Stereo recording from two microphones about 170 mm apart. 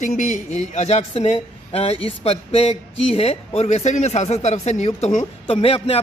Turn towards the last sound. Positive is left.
turn(degrees=35)  # may be behind; listen again after turning